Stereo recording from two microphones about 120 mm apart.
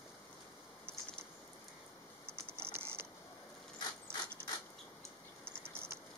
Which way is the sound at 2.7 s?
20° right (ahead or behind).